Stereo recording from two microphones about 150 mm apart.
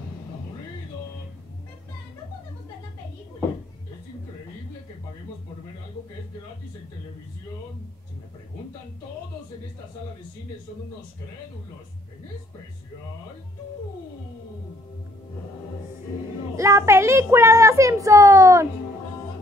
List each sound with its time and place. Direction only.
16.5 s a child's voice: 20° right (ahead or behind)